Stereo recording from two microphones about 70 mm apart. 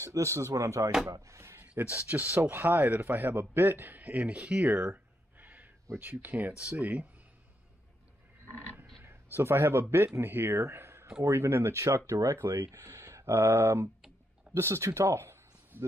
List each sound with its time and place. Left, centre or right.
0.0 s speech: right
1.8 s speech: right
4.4 s speech: centre
4.9 s a sound: right
5.9 s speech: right
9.0 s speech: right
10.6 s a sound: right
11.2 s speech: right
14.5 s a sound: right